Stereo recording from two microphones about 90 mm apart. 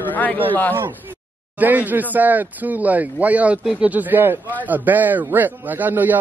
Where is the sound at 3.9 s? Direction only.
20° right (ahead or behind).